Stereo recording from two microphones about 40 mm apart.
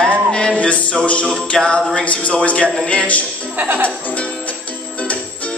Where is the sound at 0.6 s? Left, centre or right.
Left.